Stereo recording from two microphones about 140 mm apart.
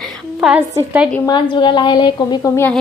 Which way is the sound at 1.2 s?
35° left (ahead or behind).